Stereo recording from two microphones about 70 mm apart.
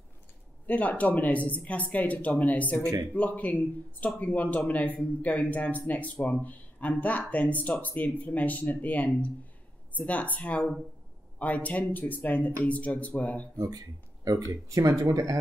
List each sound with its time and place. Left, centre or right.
0.7 s speech: left
2.8 s speech: right
3.1 s speech: left
13.6 s speech: right